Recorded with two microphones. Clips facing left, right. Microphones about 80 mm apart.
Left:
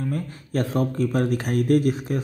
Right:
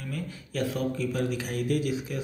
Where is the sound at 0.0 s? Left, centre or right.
Left.